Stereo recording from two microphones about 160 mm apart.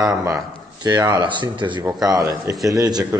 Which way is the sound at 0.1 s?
20° right (ahead or behind).